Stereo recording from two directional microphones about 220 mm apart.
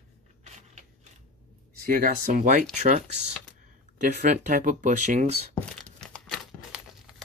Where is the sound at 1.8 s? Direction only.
40° right (ahead or behind).